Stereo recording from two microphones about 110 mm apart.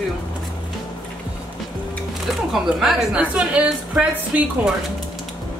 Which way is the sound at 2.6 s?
10° right (ahead or behind).